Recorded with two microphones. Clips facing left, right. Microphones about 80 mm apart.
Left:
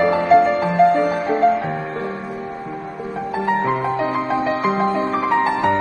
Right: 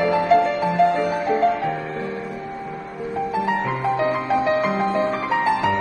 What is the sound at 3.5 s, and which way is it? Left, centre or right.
Music, left.